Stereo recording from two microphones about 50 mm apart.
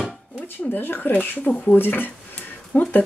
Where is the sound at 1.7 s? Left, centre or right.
Left.